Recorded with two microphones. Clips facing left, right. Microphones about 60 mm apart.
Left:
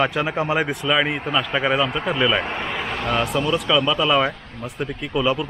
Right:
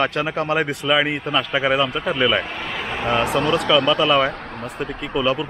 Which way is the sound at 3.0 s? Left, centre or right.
Centre.